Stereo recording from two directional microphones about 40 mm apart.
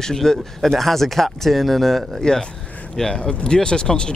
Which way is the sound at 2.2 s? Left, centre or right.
Centre.